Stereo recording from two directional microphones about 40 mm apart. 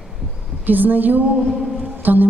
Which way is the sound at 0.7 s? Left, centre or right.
Right.